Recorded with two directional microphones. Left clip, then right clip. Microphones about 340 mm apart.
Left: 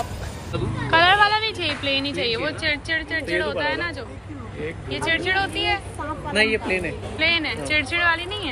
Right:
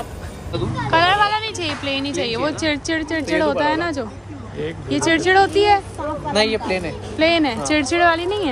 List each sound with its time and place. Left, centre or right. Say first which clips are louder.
0.8 s a woman's voice: even; centre
6.8 s a woman's voice: right 4 dB; centre